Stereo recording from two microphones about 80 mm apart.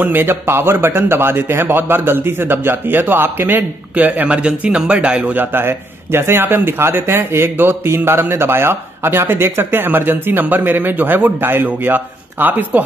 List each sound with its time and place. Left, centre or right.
0.0 s a man's voice: right